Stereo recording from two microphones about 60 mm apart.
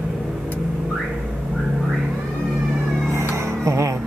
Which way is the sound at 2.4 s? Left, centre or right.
Centre.